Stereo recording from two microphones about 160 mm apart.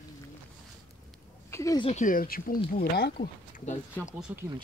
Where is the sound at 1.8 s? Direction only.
45° left (ahead or behind); by 3.3 s 80° left.